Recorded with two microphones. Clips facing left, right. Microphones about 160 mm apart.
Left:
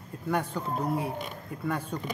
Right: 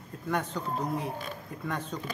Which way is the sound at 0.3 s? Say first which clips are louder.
Left 2 dB; 10° left (ahead or behind).